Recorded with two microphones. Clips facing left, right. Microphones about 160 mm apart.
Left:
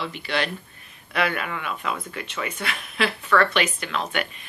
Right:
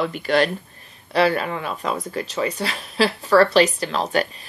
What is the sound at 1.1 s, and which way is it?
Speech, 35° right (ahead or behind).